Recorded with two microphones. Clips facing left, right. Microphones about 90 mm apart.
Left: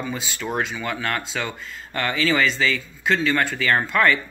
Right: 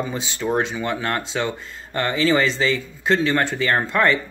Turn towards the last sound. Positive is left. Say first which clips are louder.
# right 1 dB
turn(degrees=-30)  # may be behind; listen again after turning